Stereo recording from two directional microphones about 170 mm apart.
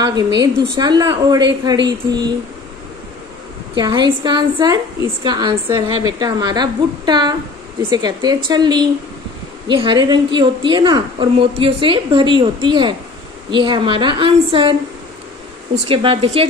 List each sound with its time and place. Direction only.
0.4 s a woman's voice: 25° right (ahead or behind)
3.7 s a woman's voice: 25° right (ahead or behind)
15.7 s speech: 30° right (ahead or behind)